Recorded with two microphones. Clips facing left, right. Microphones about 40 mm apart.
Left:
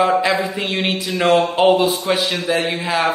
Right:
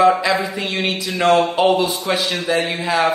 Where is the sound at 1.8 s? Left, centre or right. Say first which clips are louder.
Left 2 dB; centre.